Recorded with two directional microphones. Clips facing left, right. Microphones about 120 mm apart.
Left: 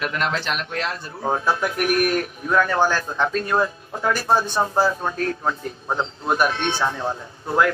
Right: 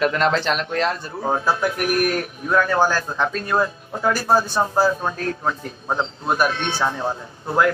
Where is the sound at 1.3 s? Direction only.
25° right (ahead or behind).